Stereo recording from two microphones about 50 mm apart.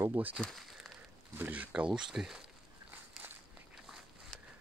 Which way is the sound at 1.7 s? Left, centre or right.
Right.